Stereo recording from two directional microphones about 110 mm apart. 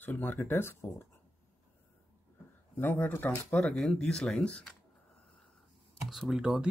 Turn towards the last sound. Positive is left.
turn(degrees=-5)  # may be behind; listen again after turning